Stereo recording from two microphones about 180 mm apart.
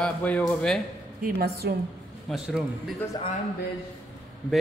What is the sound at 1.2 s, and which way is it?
Speech, 60° right (ahead or behind).